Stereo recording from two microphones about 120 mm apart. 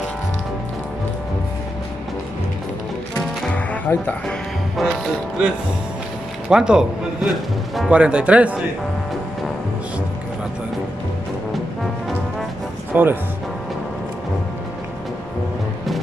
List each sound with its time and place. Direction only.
3.2 s music: 15° left (ahead or behind)
4.7 s music: centre (ahead or behind)
6.5 s speech: 5° right (ahead or behind)
7.9 s speech: 10° right (ahead or behind)
12.9 s speech: 15° right (ahead or behind)